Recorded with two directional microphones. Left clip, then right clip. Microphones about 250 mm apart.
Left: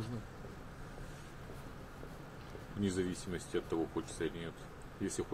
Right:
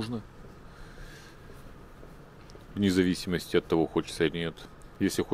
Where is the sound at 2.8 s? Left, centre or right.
Right.